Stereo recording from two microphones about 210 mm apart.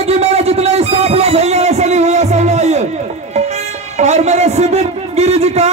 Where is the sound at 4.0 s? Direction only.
30° right (ahead or behind).